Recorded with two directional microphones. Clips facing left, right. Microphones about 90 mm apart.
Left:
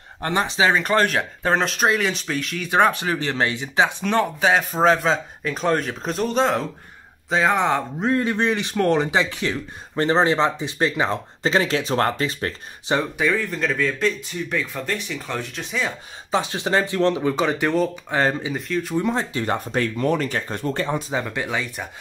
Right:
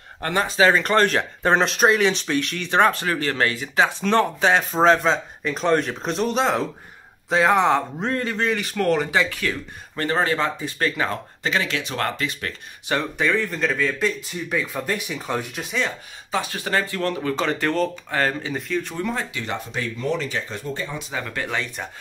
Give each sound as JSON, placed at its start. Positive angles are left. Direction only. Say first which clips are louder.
{"t": 0.2, "sound": "speech", "louder": "right 1 dB", "side_deg": 20}
{"t": 8.3, "sound": "speech", "louder": "left 2 dB", "side_deg": 20}
{"t": 11.4, "sound": "speech", "louder": "left 4 dB", "side_deg": 30}
{"t": 13.2, "sound": "speech", "louder": "even", "side_deg": 5}
{"t": 15.6, "sound": "speech", "louder": "left 2 dB", "side_deg": 0}
{"t": 16.3, "sound": "speech", "louder": "left 3 dB", "side_deg": 25}
{"t": 18.5, "sound": "speech", "louder": "left 1 dB", "side_deg": 5}
{"t": 19.1, "sound": "speech", "louder": "left 4 dB", "side_deg": 40}
{"t": 21.1, "sound": "speech", "louder": "left 3 dB", "side_deg": 20}